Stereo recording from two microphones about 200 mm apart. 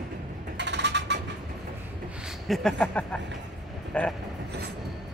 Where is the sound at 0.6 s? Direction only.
60° right (ahead or behind).